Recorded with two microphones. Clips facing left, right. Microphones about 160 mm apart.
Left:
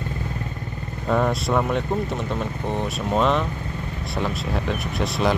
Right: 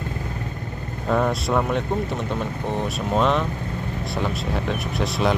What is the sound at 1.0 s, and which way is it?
Speech, centre (ahead or behind).